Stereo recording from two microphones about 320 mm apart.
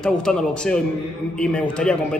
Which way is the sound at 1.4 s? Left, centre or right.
Centre.